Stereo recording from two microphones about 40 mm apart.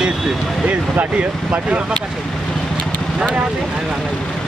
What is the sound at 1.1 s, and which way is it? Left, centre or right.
Speech, right.